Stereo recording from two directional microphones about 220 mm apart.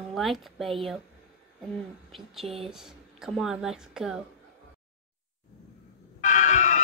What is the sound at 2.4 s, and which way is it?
Speech, 25° right (ahead or behind).